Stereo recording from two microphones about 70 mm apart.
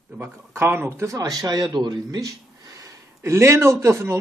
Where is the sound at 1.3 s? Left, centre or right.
Right.